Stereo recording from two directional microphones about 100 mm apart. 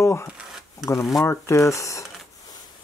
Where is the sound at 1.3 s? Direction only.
30° left (ahead or behind).